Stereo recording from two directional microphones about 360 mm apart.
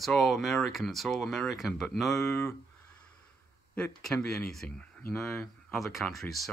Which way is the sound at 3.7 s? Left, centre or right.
Centre.